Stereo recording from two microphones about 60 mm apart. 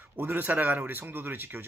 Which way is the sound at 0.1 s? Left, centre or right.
Right.